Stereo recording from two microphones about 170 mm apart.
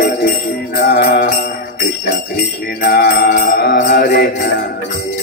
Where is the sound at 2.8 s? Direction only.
65° left (ahead or behind).